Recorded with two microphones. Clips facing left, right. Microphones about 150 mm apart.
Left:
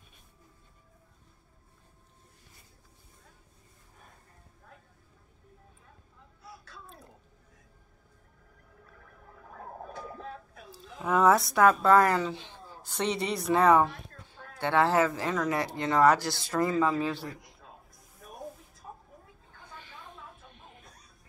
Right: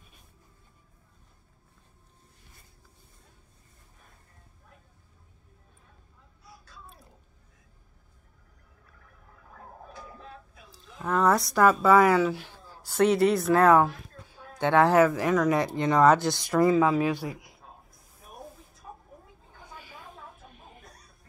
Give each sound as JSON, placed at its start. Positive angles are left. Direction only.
{"t": 11.0, "sound": "speech", "side_deg": 5}
{"t": 14.6, "sound": "speech", "side_deg": -15}
{"t": 19.5, "sound": "a sound", "side_deg": -10}